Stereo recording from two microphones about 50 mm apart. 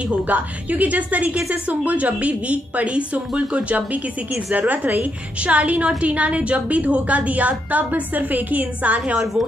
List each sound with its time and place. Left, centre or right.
0.1 s a woman's voice: right